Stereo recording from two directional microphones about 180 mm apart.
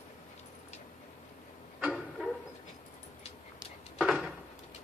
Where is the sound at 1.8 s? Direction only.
5° right (ahead or behind).